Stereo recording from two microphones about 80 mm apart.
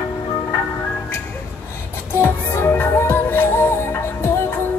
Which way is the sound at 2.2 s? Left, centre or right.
Left.